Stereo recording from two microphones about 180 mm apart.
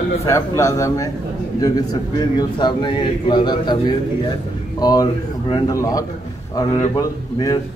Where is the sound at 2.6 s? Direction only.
25° left (ahead or behind).